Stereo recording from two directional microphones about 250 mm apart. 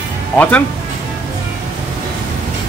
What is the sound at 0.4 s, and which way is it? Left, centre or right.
Speech, centre.